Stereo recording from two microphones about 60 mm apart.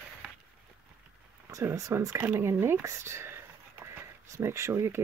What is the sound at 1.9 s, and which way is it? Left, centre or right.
Speech, right.